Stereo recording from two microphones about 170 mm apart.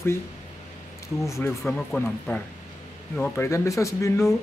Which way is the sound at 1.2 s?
15° left (ahead or behind).